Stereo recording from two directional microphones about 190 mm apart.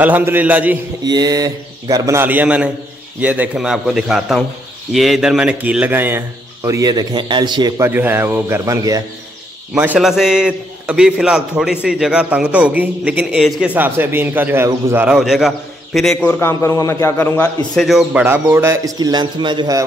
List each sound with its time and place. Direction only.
0.0 s a man's voice: 10° right (ahead or behind)
1.0 s a man's voice: 20° right (ahead or behind)
9.8 s a man's voice: 5° right (ahead or behind); by 17.5 s 10° left (ahead or behind)
17.7 s a man's voice: centre (ahead or behind); by 19.8 s 25° right (ahead or behind)